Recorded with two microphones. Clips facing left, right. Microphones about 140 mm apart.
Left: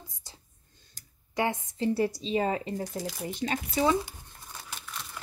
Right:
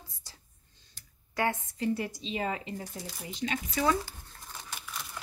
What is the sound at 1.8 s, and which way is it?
Speech, 35° left (ahead or behind).